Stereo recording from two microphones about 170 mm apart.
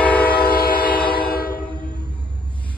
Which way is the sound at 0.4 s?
60° left (ahead or behind).